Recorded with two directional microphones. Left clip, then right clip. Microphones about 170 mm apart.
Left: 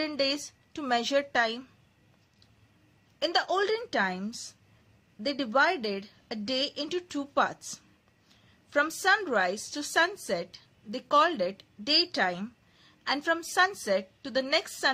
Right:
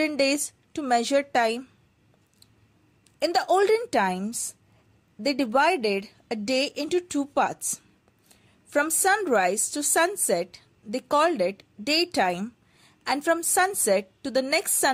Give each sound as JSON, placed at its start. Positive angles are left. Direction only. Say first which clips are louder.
{"t": 0.0, "sound": "a woman's voice", "louder": "right 6 dB", "side_deg": -30}
{"t": 3.2, "sound": "a woman's voice", "louder": "right 5 dB", "side_deg": -30}
{"t": 9.0, "sound": "a woman's voice", "louder": "right 5 dB", "side_deg": -35}